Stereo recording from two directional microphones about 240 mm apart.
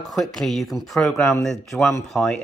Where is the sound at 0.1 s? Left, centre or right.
Centre.